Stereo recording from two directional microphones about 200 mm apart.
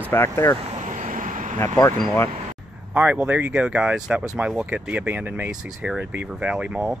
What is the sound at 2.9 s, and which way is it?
Speech, 5° right (ahead or behind).